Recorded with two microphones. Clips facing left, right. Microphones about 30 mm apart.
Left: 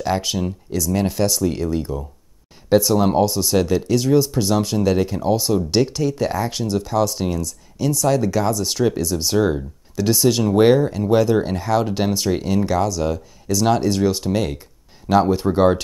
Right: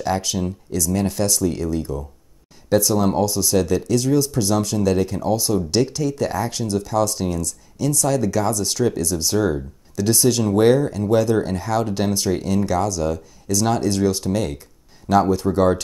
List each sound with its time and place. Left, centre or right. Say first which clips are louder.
0.0 s speech: left 1 dB; centre